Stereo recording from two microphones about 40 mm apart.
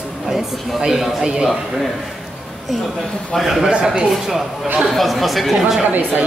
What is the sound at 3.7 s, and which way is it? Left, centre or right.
Speech, right.